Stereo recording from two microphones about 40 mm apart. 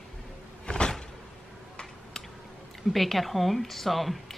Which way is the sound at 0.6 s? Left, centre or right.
Left.